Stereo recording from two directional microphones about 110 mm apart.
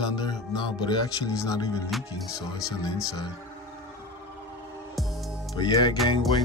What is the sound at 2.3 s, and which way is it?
Speech, 35° left (ahead or behind).